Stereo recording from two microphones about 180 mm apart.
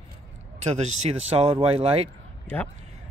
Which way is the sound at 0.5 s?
40° right (ahead or behind).